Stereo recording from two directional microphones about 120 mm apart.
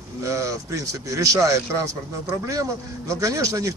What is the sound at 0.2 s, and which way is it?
Speech, 25° right (ahead or behind).